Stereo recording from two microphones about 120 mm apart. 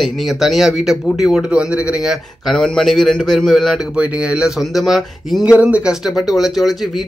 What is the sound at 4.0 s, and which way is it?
Speech, 10° right (ahead or behind).